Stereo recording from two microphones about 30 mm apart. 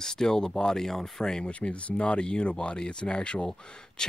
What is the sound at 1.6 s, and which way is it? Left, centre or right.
Speech, left.